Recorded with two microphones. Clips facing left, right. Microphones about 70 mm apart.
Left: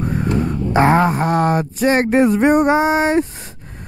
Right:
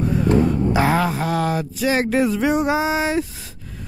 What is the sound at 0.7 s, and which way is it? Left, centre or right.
Speech, left.